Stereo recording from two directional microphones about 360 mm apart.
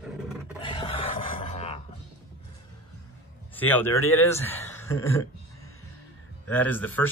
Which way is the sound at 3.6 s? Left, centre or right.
Centre.